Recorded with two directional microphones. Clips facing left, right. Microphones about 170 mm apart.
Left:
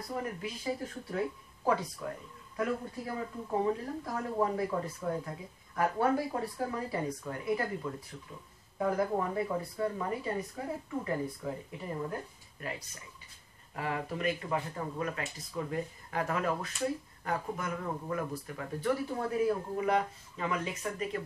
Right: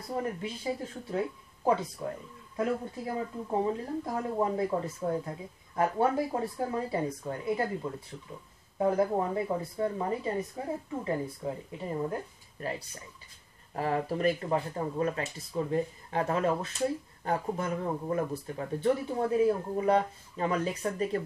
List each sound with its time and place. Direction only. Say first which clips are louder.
0.1 s speech: right 4 dB; 30° right (ahead or behind)
3.4 s speech: even; 25° right (ahead or behind)